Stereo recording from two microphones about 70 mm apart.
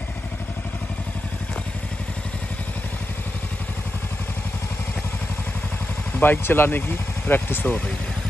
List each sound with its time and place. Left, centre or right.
6.2 s speech: left